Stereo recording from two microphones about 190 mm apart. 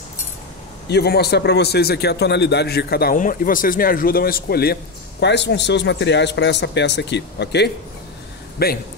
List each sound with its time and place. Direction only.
0.8 s speech: 60° left (ahead or behind)